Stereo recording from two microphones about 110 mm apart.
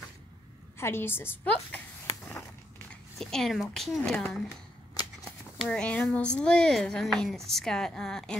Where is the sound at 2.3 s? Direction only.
20° left (ahead or behind).